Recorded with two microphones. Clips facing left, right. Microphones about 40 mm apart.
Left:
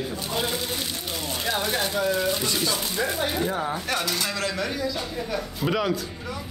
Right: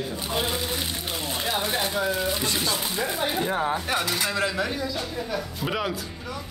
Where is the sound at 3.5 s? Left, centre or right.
Right.